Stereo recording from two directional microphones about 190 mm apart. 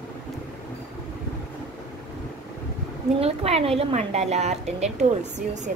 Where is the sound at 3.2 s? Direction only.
30° right (ahead or behind).